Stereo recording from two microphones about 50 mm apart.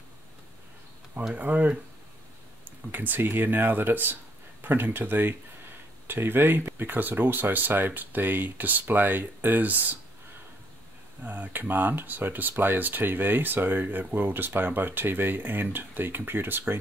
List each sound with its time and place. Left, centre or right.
1.3 s speech: right
11.2 s speech: right